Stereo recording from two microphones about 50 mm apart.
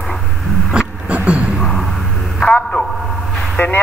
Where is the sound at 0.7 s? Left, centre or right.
Centre.